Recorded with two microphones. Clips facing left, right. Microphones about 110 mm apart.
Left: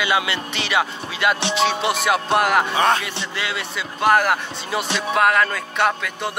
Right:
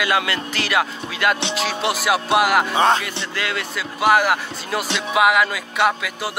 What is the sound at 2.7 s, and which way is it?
Speech, 30° right (ahead or behind).